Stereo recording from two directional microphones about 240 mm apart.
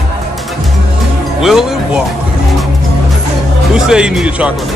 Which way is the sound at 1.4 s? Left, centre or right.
Centre.